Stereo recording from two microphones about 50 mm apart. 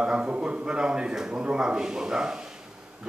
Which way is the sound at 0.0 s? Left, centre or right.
Right.